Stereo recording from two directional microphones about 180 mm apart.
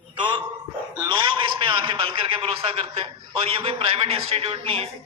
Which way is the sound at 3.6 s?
35° right (ahead or behind).